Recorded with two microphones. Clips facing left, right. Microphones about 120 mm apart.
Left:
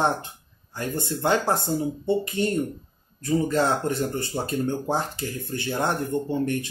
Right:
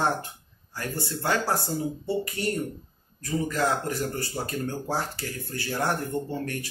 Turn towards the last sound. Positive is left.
turn(degrees=20)  # may be behind; listen again after turning